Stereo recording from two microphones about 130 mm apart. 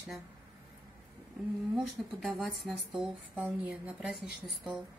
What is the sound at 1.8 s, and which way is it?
Speech, centre (ahead or behind).